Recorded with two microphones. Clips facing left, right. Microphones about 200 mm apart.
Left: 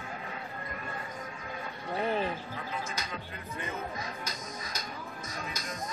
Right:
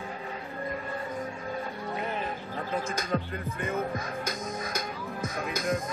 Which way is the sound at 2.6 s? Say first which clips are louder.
Right 6 dB; 45° right (ahead or behind).